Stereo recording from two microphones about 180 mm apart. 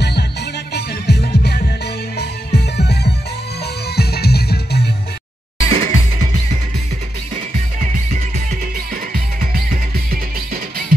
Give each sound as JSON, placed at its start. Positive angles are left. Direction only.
{"t": 0.7, "sound": "music", "side_deg": 60}
{"t": 5.7, "sound": "music", "side_deg": -35}
{"t": 7.8, "sound": "music", "side_deg": -45}